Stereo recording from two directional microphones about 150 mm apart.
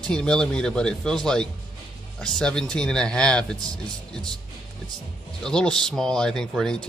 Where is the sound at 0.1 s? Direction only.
5° left (ahead or behind).